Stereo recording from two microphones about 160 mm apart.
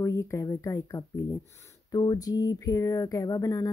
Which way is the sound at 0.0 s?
20° left (ahead or behind).